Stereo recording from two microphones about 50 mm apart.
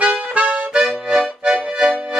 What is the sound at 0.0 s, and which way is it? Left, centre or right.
Accordion, right.